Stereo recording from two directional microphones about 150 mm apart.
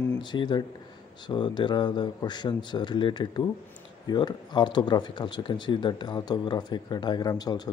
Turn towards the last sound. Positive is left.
turn(degrees=25)  # may be behind; listen again after turning